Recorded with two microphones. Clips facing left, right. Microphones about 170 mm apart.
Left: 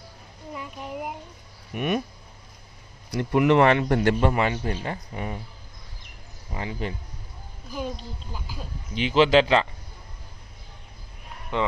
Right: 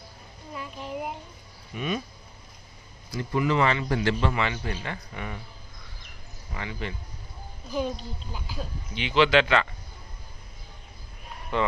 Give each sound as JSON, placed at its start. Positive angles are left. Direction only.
{"t": 0.6, "sound": "child singing", "side_deg": 10}
{"t": 1.7, "sound": "speech", "side_deg": 60}
{"t": 3.1, "sound": "a man's voice", "side_deg": 65}
{"t": 6.5, "sound": "speech", "side_deg": 35}
{"t": 7.7, "sound": "a woman's voice", "side_deg": 5}
{"t": 8.5, "sound": "speech", "side_deg": 40}
{"t": 11.5, "sound": "speech", "side_deg": 20}